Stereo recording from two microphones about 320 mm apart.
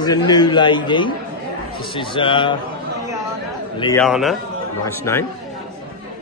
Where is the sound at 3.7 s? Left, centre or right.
Centre.